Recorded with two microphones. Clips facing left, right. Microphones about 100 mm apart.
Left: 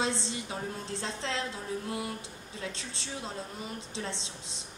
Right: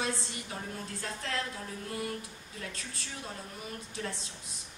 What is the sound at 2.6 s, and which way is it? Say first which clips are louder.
Speech: left 3 dB; 25° left (ahead or behind).